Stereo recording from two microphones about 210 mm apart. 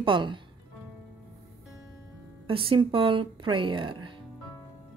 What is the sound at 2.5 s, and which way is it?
Speech, 25° right (ahead or behind).